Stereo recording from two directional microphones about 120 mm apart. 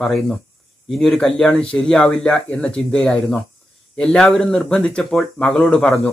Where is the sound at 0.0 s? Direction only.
5° left (ahead or behind).